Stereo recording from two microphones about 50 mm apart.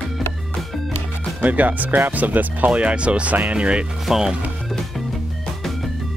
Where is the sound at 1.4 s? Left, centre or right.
Right.